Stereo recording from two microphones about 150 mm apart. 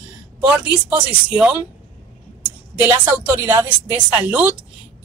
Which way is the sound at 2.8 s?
15° right (ahead or behind).